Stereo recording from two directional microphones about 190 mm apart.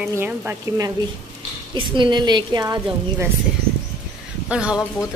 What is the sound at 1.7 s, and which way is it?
A woman's voice, 25° right (ahead or behind).